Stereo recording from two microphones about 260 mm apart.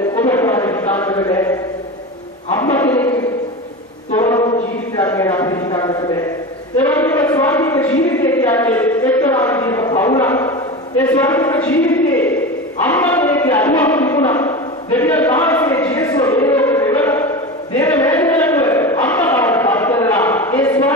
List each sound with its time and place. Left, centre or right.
0.3 s music: centre
2.7 s a man's voice: centre
4.2 s choir: centre
4.9 s a man's voice: centre
6.8 s a sound: centre
7.2 s a man's voice: centre
12.8 s a sound: centre
16.3 s music: centre
17.7 s a sound: centre